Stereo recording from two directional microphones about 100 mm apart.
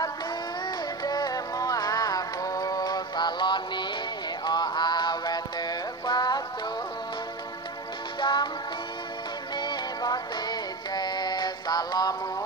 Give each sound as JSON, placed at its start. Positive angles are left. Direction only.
{"t": 1.0, "sound": "music", "side_deg": 40}
{"t": 8.2, "sound": "music", "side_deg": 50}
{"t": 9.6, "sound": "synthetic singing", "side_deg": 45}